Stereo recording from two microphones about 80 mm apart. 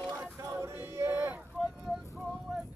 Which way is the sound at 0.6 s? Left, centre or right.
Right.